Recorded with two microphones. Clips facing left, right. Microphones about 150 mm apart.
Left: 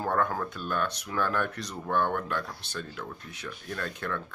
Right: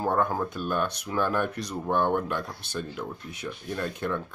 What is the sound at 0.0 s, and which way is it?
Speech, 15° right (ahead or behind).